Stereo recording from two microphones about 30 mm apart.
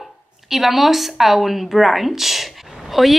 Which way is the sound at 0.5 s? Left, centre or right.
Centre.